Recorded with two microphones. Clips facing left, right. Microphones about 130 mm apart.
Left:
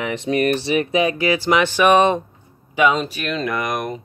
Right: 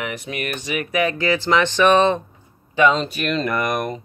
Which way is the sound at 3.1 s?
Centre (ahead or behind).